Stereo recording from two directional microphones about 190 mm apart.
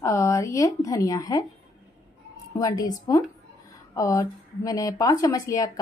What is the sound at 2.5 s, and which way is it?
A woman's voice, 20° left (ahead or behind).